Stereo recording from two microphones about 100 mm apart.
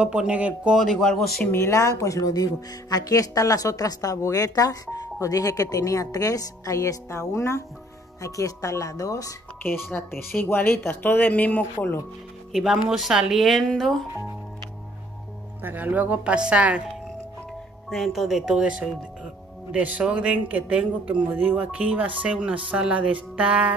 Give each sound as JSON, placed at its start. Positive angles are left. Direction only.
{"t": 0.0, "sound": "a man's voice", "side_deg": -10}
{"t": 0.7, "sound": "speech", "side_deg": 0}
{"t": 1.4, "sound": "speech", "side_deg": 25}
{"t": 9.6, "sound": "speech", "side_deg": 20}
{"t": 12.5, "sound": "speech", "side_deg": -5}
{"t": 15.6, "sound": "a man's voice", "side_deg": -15}
{"t": 17.8, "sound": "a man's voice", "side_deg": 0}